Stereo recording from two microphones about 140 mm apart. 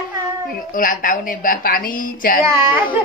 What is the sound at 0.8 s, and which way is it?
A woman's voice, 75° left (ahead or behind).